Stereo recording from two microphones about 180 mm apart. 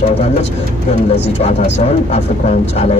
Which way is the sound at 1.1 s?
35° left (ahead or behind).